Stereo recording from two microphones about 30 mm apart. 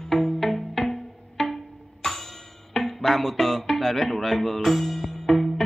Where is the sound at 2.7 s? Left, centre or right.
Centre.